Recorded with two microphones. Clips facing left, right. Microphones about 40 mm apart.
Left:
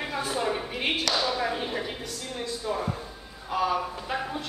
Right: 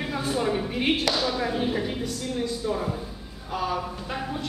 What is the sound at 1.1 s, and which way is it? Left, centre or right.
Speech, centre.